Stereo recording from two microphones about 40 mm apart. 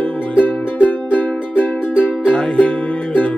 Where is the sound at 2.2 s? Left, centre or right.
Left.